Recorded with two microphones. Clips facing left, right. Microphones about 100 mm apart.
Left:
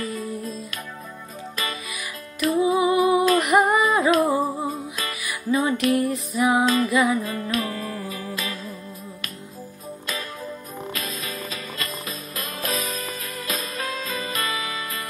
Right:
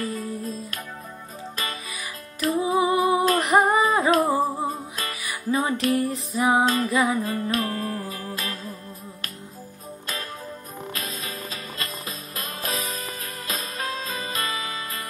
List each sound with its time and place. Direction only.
2.6 s female singing: 35° right (ahead or behind)
8.3 s music: 35° right (ahead or behind)
10.9 s music: 30° right (ahead or behind)